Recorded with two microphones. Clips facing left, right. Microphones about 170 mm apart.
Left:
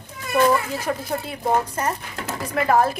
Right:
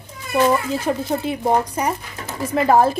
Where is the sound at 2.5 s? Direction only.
30° right (ahead or behind).